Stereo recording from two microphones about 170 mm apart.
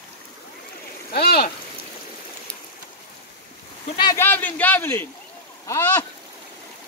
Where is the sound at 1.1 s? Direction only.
65° left (ahead or behind).